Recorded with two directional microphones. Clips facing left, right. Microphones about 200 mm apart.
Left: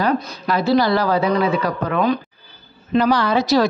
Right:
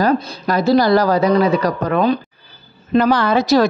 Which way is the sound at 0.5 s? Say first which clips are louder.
Right 3 dB; 40° right (ahead or behind).